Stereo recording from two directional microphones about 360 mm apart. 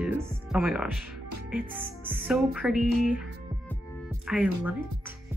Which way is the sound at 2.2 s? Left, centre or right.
Centre.